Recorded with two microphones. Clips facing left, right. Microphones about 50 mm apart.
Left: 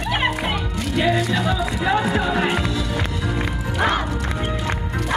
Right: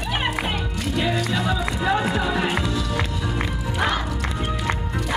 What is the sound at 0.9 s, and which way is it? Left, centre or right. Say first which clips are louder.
Music: left 4 dB; left.